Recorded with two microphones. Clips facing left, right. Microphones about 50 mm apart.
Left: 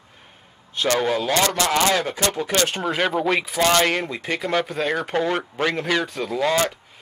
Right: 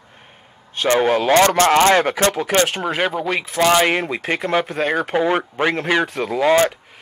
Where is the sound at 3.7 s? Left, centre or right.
Centre.